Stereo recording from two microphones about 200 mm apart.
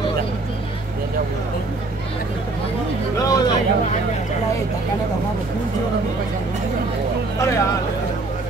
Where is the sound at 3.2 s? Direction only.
20° left (ahead or behind).